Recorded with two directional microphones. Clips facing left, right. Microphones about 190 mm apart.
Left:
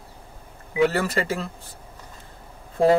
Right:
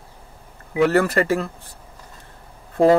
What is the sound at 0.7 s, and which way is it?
Speech, 60° right (ahead or behind).